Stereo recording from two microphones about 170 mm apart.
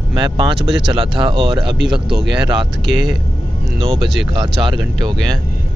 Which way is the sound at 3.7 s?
35° right (ahead or behind).